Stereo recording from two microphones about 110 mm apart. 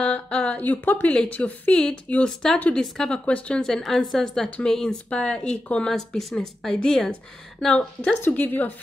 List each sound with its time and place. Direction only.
0.0 s speech: 10° left (ahead or behind)